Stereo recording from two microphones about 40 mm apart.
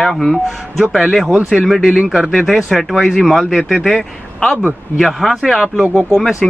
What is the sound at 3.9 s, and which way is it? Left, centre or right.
Speech, left.